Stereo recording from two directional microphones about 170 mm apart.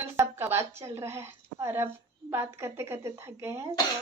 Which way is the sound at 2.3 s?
15° right (ahead or behind).